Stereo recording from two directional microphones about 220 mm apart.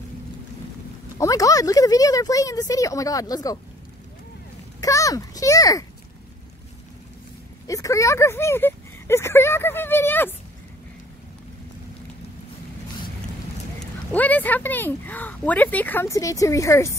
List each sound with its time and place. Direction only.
1.1 s speech: 15° left (ahead or behind)
4.8 s a sound: 15° left (ahead or behind)
7.6 s speech: 15° left (ahead or behind)
14.1 s speech: 5° left (ahead or behind)